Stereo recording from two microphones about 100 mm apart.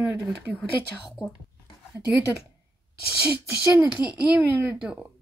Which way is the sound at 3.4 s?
15° right (ahead or behind).